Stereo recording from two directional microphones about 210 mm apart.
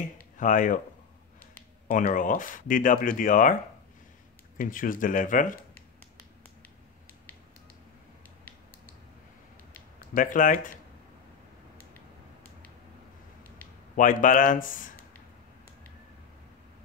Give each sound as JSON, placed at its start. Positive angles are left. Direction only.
{"t": 0.4, "sound": "speech", "side_deg": 40}
{"t": 1.9, "sound": "speech", "side_deg": 40}
{"t": 4.6, "sound": "speech", "side_deg": 40}
{"t": 9.9, "sound": "speech", "side_deg": 40}
{"t": 13.9, "sound": "speech", "side_deg": 40}